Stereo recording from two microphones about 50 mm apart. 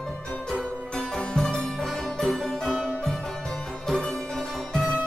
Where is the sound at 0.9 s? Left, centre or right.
Centre.